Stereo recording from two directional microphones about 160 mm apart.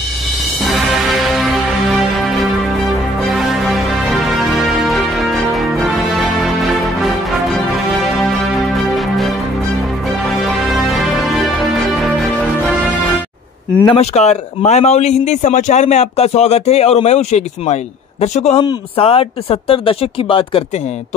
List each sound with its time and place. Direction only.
0.6 s music: centre (ahead or behind)
8.7 s music: centre (ahead or behind)
13.9 s a man's voice: 40° left (ahead or behind)
18.6 s speech: 35° left (ahead or behind)